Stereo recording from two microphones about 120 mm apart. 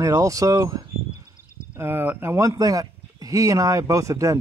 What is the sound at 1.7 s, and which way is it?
Speech, 20° right (ahead or behind).